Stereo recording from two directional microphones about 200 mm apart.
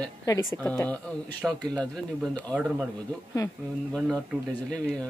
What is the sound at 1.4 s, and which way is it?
A man's voice, 5° right (ahead or behind).